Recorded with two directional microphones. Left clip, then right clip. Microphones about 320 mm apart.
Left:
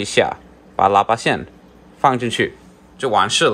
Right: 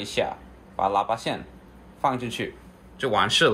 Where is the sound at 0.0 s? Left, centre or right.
Left.